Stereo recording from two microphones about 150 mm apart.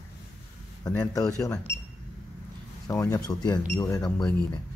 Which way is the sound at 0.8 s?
25° left (ahead or behind).